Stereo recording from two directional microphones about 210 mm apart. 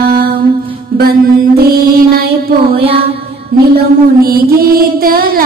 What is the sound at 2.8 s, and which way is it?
Music, 25° right (ahead or behind).